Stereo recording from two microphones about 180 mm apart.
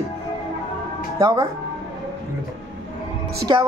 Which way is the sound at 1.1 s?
20° right (ahead or behind).